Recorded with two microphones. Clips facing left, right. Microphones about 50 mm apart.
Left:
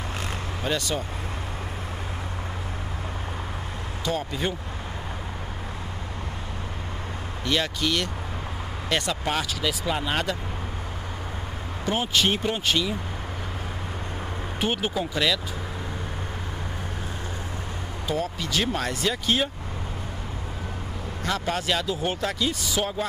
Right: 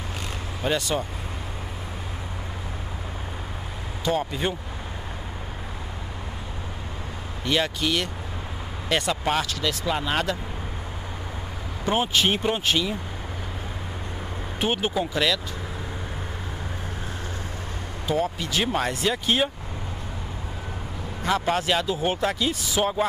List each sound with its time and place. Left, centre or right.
0.7 s speech: centre
4.0 s speech: centre
7.4 s speech: centre
11.8 s speech: centre
14.6 s speech: centre
18.0 s speech: centre
21.2 s speech: centre